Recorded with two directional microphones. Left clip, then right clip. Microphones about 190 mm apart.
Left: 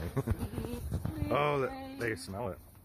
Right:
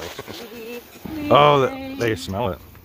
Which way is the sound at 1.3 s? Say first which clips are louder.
Right 17 dB; 30° right (ahead or behind).